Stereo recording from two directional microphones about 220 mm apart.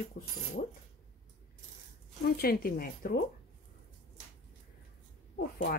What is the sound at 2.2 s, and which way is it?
Speech, 45° left (ahead or behind).